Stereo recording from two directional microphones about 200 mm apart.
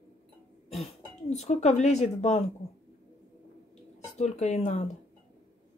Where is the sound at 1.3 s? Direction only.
35° left (ahead or behind).